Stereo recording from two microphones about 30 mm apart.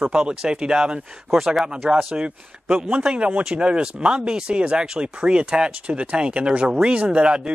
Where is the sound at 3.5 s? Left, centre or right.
Right.